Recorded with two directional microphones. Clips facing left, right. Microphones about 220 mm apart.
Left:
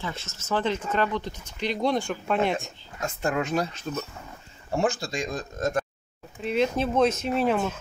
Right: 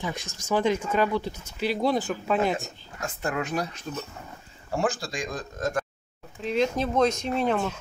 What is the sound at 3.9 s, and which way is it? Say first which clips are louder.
Speech: left 3 dB; 40° left (ahead or behind).